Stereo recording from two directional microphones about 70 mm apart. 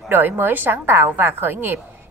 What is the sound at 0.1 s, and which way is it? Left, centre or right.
A woman's voice, right.